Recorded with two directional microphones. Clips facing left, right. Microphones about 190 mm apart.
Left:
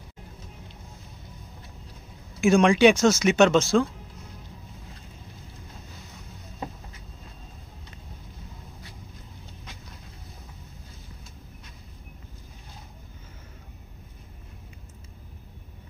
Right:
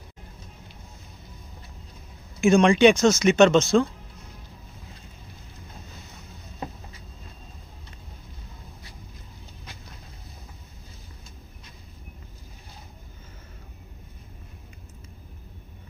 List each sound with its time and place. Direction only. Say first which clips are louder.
2.4 s speech: right 1 dB; 5° left (ahead or behind)